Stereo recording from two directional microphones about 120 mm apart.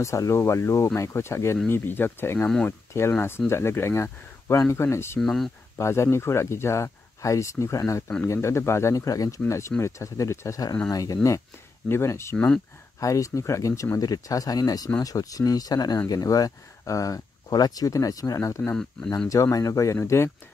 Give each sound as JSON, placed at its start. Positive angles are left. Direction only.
{"t": 0.0, "sound": "speech", "side_deg": 25}
{"t": 5.2, "sound": "speech", "side_deg": 0}
{"t": 5.8, "sound": "speech", "side_deg": 25}